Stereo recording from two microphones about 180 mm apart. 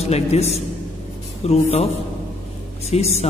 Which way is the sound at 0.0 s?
35° left (ahead or behind).